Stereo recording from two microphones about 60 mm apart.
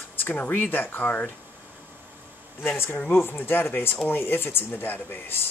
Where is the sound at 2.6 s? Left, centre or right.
Left.